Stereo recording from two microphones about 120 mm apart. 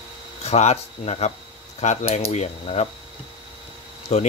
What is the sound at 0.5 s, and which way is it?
Speech, 65° left (ahead or behind).